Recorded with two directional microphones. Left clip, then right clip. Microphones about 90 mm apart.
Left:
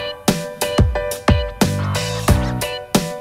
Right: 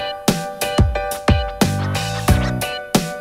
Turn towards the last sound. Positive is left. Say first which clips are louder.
# even
turn(degrees=0)  # may be behind; listen again after turning